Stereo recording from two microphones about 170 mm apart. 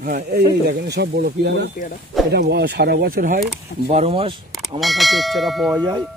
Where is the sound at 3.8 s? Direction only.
35° right (ahead or behind).